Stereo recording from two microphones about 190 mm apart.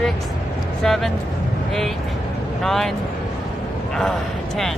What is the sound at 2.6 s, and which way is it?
Speech, centre (ahead or behind).